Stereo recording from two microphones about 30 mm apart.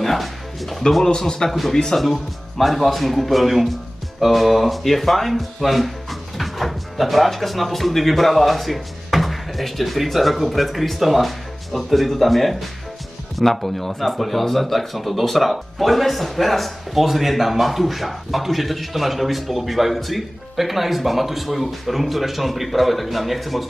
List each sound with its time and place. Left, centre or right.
0.0 s music: centre
1.0 s a man's voice: left
2.0 s speech: centre